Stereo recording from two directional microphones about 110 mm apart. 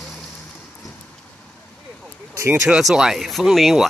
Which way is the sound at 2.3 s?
25° right (ahead or behind).